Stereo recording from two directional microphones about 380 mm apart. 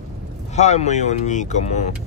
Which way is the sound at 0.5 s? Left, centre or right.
Centre.